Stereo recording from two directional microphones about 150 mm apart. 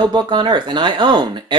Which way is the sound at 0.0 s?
30° right (ahead or behind).